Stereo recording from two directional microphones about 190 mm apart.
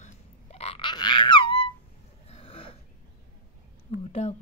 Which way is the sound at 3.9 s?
35° left (ahead or behind).